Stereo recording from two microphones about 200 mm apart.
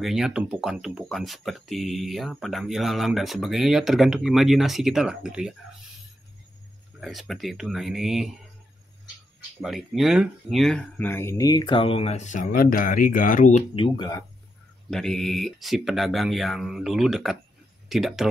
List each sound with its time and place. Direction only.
0.0 s speech: centre (ahead or behind)
7.0 s speech: centre (ahead or behind)
9.6 s speech: centre (ahead or behind); by 13.8 s 40° left (ahead or behind)
13.8 s speech: 20° left (ahead or behind)
14.9 s speech: centre (ahead or behind)